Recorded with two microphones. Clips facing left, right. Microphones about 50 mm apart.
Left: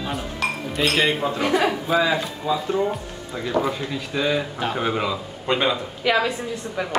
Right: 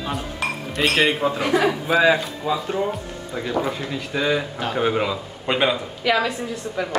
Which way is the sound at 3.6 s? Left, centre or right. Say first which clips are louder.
Even; centre.